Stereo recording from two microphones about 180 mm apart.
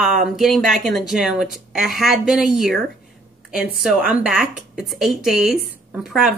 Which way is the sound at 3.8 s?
5° right (ahead or behind).